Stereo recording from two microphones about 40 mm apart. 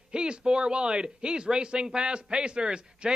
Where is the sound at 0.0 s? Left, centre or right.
Right.